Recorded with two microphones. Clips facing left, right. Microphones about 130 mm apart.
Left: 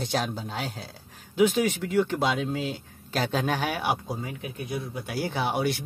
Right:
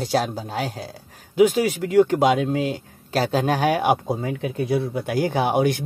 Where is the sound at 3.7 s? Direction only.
50° right (ahead or behind).